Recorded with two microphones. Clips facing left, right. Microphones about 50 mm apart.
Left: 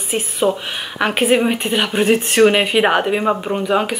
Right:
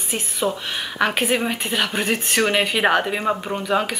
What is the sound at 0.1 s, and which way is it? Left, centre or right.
A woman's voice, left.